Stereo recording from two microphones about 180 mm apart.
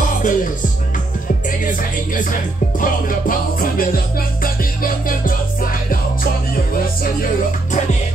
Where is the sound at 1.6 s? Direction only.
50° left (ahead or behind).